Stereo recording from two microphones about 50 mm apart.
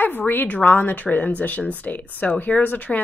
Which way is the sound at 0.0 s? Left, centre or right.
Left.